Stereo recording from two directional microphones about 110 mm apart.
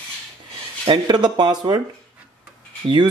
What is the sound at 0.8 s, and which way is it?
Speech, 40° right (ahead or behind).